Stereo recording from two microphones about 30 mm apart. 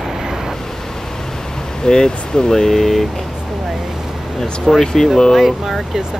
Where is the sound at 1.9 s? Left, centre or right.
Left.